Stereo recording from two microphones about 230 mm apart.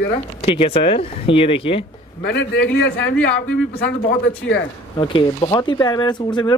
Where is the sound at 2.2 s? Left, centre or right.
Left.